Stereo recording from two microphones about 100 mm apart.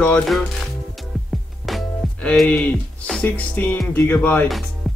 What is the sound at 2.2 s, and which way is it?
Speech, 10° left (ahead or behind).